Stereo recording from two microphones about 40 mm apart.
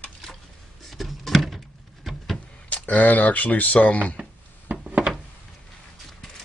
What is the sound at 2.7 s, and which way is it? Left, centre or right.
Speech, left.